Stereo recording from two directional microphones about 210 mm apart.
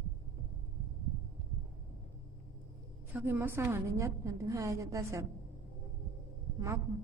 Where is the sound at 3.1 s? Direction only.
10° right (ahead or behind).